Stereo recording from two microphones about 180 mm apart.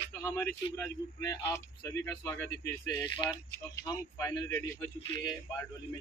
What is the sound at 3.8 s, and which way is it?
Speech, 20° left (ahead or behind).